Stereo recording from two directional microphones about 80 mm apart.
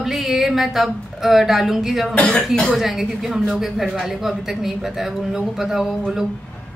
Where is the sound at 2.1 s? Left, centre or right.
Centre.